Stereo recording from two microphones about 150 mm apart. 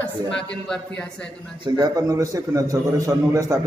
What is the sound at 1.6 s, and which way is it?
A man's voice, 25° right (ahead or behind).